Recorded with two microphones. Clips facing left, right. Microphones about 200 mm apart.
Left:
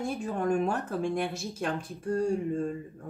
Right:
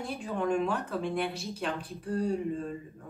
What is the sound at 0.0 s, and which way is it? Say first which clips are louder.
Speech: left 2 dB; 45° left (ahead or behind).